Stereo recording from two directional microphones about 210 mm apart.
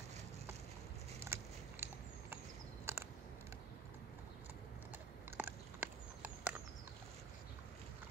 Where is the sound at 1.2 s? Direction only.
10° right (ahead or behind).